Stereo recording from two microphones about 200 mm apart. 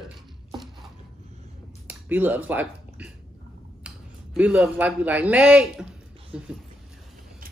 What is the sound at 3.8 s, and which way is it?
A man's voice, 5° right (ahead or behind).